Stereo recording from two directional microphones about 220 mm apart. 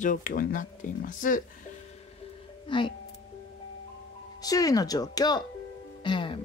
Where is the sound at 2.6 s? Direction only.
20° left (ahead or behind).